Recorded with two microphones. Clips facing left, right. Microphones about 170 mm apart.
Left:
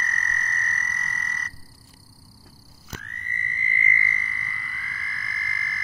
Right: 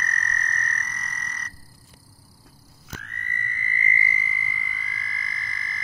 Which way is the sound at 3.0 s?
65° right (ahead or behind).